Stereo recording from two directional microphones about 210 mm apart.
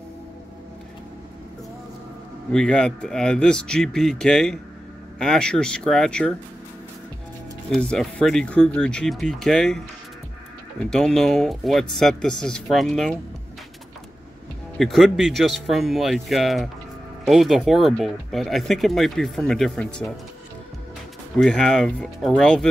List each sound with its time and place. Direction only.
2.5 s speech: 5° left (ahead or behind)
7.7 s speech: 5° left (ahead or behind)
10.9 s speech: 5° left (ahead or behind)
14.8 s speech: centre (ahead or behind)
21.4 s speech: 5° left (ahead or behind)